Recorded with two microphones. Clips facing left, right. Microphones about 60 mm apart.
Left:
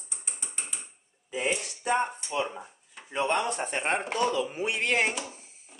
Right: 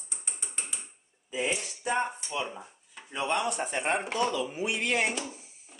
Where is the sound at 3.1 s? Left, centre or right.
Left.